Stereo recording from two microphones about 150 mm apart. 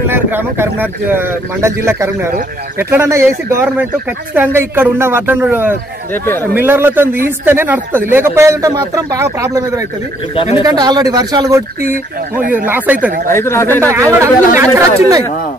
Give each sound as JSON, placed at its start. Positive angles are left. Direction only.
{"t": 0.1, "sound": "speech", "side_deg": -15}
{"t": 6.1, "sound": "speech", "side_deg": 15}
{"t": 6.5, "sound": "speech", "side_deg": -15}
{"t": 12.6, "sound": "speech", "side_deg": -10}
{"t": 13.3, "sound": "speech", "side_deg": 20}
{"t": 13.7, "sound": "speech", "side_deg": -20}